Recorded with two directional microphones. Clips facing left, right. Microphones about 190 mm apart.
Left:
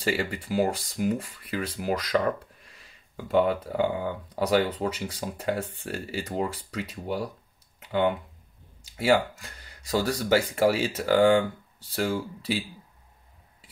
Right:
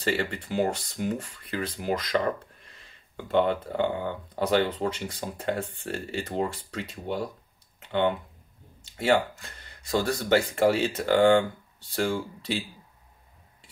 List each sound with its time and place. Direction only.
0.0 s speech: 10° left (ahead or behind)